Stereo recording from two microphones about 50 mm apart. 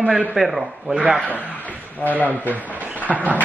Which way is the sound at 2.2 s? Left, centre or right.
Right.